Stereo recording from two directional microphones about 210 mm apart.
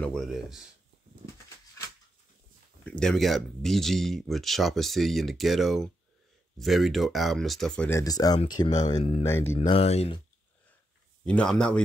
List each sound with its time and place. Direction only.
0.0 s speech: centre (ahead or behind)
2.8 s speech: 5° left (ahead or behind)
8.0 s speech: 15° left (ahead or behind)
8.8 s speech: 30° left (ahead or behind)
11.2 s speech: 5° left (ahead or behind)